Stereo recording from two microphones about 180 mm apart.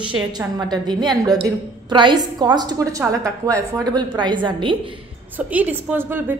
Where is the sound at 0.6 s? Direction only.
25° right (ahead or behind).